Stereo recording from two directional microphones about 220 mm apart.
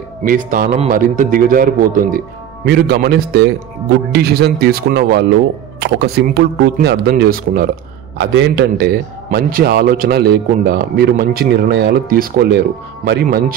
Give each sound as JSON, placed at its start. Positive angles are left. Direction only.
{"t": 0.2, "sound": "a man's voice", "side_deg": -40}
{"t": 8.2, "sound": "a man's voice", "side_deg": -55}